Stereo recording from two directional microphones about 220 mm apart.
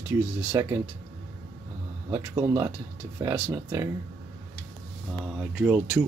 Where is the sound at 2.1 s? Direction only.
15° right (ahead or behind).